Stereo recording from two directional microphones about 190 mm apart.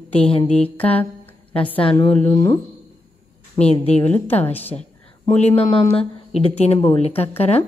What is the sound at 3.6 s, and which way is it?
Speech, 35° left (ahead or behind).